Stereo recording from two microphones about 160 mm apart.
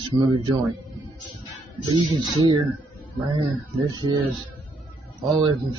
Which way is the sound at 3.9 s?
25° right (ahead or behind).